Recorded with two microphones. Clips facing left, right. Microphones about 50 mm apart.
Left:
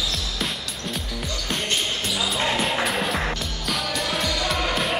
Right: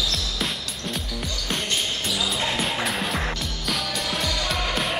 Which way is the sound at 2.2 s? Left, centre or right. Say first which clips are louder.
Left 3 dB; centre.